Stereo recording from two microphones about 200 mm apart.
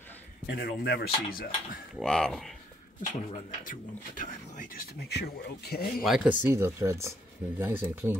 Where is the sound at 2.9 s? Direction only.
40° left (ahead or behind).